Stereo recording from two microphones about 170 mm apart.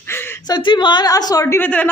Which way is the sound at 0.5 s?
30° left (ahead or behind).